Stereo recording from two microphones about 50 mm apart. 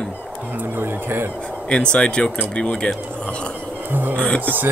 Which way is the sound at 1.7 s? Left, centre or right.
Left.